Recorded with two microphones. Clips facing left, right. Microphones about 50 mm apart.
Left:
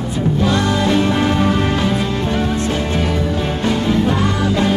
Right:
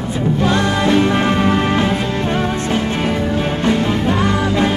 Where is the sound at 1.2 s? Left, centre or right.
Right.